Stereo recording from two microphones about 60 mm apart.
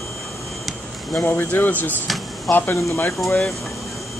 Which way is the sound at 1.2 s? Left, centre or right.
Left.